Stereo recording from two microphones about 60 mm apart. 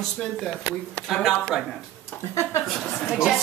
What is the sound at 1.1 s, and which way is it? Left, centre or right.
Speech, centre.